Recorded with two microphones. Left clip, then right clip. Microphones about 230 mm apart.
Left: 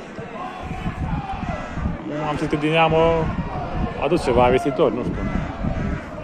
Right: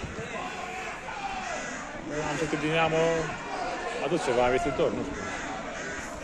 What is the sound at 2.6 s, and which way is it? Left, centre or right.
Speech, left.